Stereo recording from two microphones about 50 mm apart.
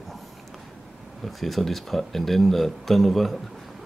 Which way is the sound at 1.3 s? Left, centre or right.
Centre.